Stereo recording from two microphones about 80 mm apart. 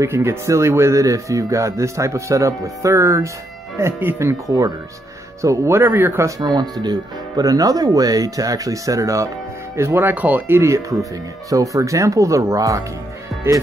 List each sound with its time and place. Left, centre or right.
0.0 s speech: right
5.4 s speech: right
6.4 s speech: right
10.6 s speech: right